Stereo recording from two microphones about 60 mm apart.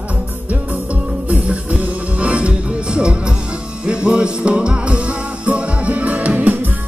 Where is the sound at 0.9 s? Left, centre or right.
Right.